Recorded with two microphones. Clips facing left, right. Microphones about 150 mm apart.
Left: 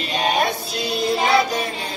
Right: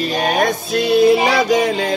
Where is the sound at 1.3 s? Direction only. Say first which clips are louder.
Right 5 dB; 90° right.